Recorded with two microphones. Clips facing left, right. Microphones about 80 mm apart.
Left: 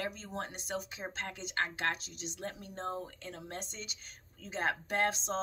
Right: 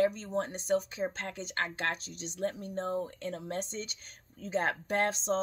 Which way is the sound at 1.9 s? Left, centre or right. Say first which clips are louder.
Right 1 dB; right.